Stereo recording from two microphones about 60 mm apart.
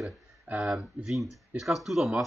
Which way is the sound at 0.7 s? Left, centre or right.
Centre.